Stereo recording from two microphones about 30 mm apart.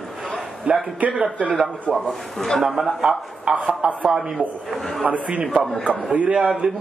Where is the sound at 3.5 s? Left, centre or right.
Right.